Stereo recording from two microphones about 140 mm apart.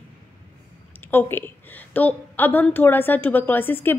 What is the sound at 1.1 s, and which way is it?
A woman's voice, 15° left (ahead or behind).